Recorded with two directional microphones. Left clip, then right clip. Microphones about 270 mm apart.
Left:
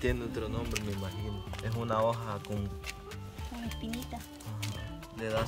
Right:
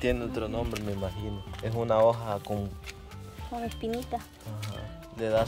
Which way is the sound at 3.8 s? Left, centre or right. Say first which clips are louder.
Right 9 dB; centre.